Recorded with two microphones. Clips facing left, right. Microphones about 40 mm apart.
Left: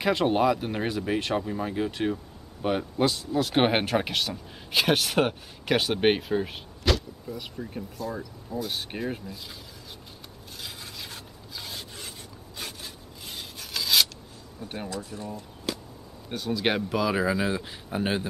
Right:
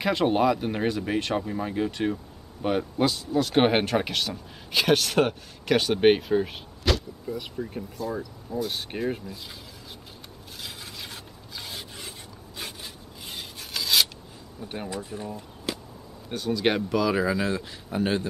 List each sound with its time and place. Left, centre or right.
0.0 s speech: centre
10.6 s filing: centre
14.6 s speech: centre
14.9 s speech: right
15.7 s a sound: centre
16.3 s speech: centre